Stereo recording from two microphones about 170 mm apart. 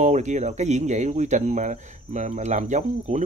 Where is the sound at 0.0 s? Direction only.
45° right (ahead or behind).